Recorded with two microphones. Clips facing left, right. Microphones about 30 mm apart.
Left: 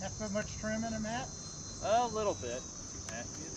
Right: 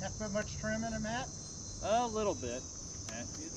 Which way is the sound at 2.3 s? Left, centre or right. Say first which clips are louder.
Left 1 dB; left.